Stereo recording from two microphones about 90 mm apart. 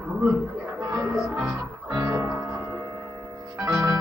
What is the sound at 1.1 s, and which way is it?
Speech, centre (ahead or behind).